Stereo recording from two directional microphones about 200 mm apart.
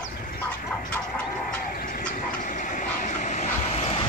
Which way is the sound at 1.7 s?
45° left (ahead or behind).